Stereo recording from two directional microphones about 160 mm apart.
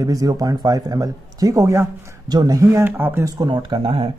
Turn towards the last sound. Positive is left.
turn(degrees=-35)  # may be behind; listen again after turning